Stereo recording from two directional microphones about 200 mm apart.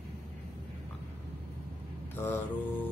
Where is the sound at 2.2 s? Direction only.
10° left (ahead or behind).